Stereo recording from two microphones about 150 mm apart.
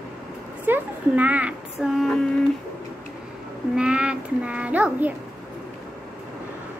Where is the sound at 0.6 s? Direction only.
10° right (ahead or behind).